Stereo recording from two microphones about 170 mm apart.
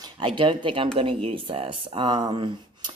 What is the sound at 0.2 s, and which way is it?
Speech, 30° right (ahead or behind).